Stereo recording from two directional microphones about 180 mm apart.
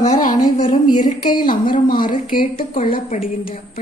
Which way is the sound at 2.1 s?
50° left (ahead or behind).